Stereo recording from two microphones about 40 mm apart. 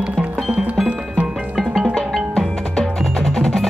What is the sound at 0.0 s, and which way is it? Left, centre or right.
Music, right.